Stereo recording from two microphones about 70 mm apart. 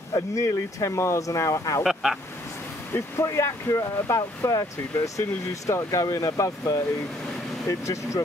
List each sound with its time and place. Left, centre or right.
0.1 s speech: left
1.8 s speech: centre
2.9 s speech: left